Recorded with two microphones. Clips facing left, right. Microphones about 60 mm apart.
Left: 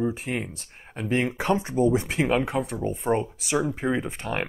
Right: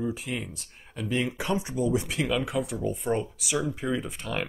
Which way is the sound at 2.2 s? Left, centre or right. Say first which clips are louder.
Left 4 dB; left.